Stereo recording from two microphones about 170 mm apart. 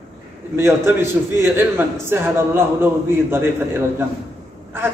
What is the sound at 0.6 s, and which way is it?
A man's voice, 15° right (ahead or behind).